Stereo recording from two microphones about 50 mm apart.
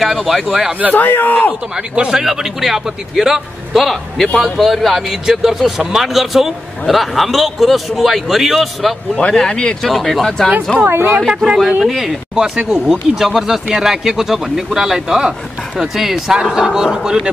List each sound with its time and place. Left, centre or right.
0.0 s speech: centre
0.9 s speech: left
2.0 s a man's voice: centre
9.3 s speech: centre
9.8 s speech: centre
10.8 s speech: right
11.2 s a man's voice: centre
12.5 s a man's voice: centre